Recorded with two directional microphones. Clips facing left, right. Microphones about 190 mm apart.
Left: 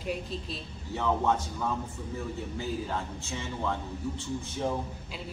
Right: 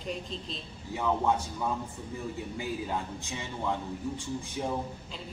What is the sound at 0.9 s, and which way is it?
Speech, 10° right (ahead or behind).